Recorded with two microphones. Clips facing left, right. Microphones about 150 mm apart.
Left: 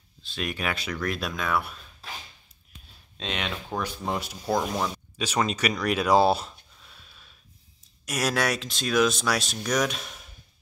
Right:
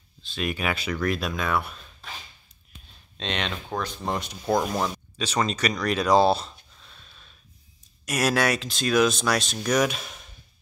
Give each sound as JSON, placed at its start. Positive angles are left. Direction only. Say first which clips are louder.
{"t": 0.2, "sound": "speech", "louder": "right 2 dB", "side_deg": 0}
{"t": 3.2, "sound": "speech", "louder": "right 2 dB", "side_deg": 5}
{"t": 5.1, "sound": "a sound", "louder": "left 2 dB", "side_deg": 10}
{"t": 8.0, "sound": "speech", "louder": "right 3 dB", "side_deg": 0}